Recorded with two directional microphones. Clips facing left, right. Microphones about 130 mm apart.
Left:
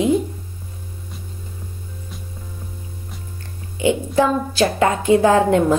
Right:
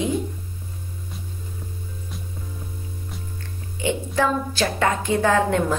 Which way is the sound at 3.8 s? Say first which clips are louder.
Left 5 dB; 10° left (ahead or behind).